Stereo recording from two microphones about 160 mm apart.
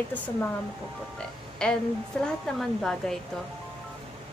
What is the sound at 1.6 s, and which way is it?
Speech, 5° left (ahead or behind).